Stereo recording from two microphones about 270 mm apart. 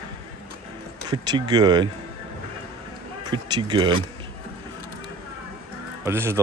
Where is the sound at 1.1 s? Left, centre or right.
Centre.